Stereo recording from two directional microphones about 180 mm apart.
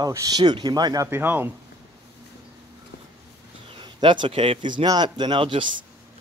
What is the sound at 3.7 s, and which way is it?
Speech, 25° right (ahead or behind).